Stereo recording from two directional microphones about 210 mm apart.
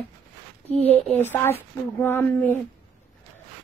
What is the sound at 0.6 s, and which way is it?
Speech, 30° right (ahead or behind).